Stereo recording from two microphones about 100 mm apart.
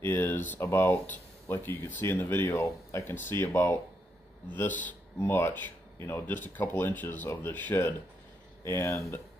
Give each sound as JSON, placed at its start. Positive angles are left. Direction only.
{"t": 0.0, "sound": "speech", "side_deg": 20}